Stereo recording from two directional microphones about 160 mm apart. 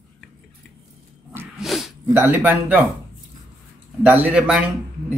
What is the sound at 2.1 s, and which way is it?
Speech, 10° right (ahead or behind).